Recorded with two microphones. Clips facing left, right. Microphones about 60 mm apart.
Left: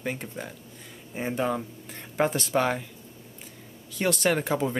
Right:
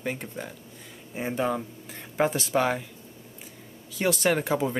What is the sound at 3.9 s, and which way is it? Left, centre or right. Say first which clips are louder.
Speech: right 1 dB; centre.